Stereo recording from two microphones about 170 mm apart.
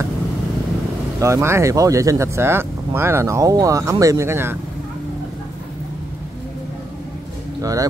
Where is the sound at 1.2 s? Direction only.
15° right (ahead or behind).